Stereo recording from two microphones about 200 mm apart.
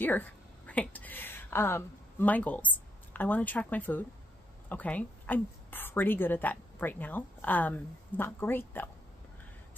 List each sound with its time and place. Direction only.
0.0 s a woman's voice: 10° left (ahead or behind)